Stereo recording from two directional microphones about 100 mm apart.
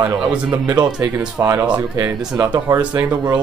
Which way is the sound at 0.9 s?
10° right (ahead or behind).